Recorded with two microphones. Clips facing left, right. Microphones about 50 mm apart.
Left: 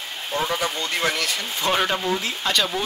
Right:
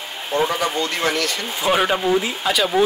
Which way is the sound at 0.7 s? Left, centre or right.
Centre.